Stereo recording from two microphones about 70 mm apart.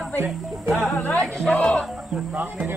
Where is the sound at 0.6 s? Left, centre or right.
Centre.